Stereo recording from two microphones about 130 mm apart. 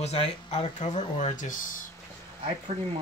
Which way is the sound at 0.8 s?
65° left (ahead or behind).